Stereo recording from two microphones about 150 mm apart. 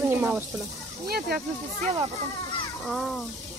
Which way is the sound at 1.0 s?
90° right.